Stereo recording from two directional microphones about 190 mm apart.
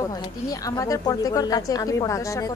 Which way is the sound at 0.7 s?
20° left (ahead or behind).